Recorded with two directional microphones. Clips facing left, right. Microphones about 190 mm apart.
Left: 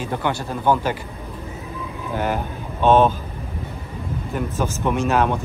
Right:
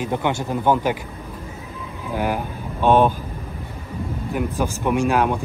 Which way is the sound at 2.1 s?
10° right (ahead or behind).